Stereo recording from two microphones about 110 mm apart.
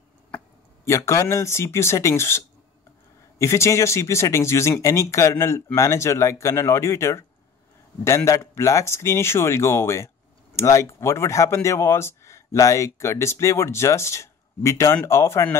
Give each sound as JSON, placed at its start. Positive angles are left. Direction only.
{"t": 0.8, "sound": "speech", "side_deg": 25}